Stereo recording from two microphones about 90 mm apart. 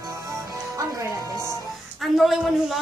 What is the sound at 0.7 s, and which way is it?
Music, 35° right (ahead or behind).